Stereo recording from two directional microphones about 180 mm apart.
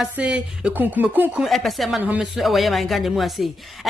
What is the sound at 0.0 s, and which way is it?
A woman's voice, 5° right (ahead or behind).